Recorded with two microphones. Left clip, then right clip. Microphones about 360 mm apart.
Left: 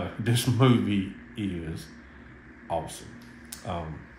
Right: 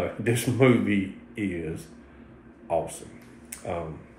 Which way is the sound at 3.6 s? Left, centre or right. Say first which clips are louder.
Right 3 dB; centre.